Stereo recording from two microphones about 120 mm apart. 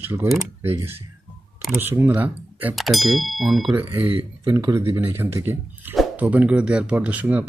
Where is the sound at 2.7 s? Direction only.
Centre (ahead or behind).